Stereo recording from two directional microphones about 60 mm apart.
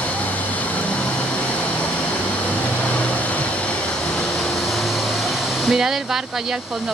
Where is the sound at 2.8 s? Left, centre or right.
Left.